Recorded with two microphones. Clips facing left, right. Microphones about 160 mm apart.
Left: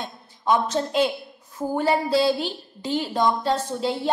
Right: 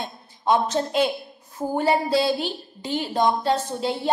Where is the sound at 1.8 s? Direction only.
15° right (ahead or behind).